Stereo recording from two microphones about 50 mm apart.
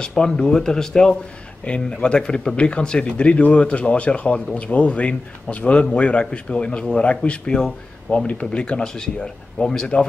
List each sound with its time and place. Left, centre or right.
0.0 s a man's voice: centre
8.1 s speech: left
8.5 s speech: centre